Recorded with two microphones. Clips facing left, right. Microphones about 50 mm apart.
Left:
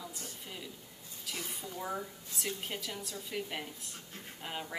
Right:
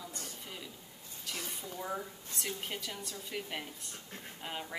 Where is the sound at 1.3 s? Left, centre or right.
Centre.